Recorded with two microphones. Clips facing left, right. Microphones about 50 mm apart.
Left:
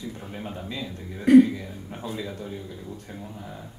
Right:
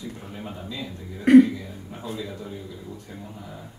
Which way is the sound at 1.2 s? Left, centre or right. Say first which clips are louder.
Right 1 dB; right.